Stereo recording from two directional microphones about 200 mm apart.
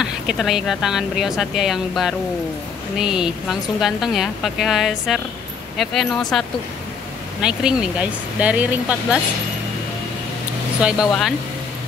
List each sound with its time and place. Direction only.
0.0 s speech: centre (ahead or behind)
7.4 s speech: 5° right (ahead or behind)
10.8 s speech: 5° right (ahead or behind)